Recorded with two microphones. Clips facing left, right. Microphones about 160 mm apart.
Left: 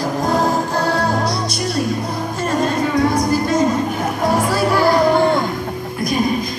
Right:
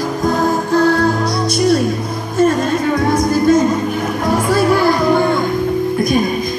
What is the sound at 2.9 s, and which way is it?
Music, 50° right (ahead or behind).